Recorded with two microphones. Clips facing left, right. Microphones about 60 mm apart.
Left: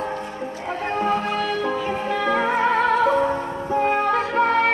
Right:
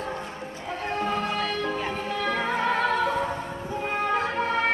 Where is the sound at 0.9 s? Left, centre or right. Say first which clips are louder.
Left 5 dB; centre.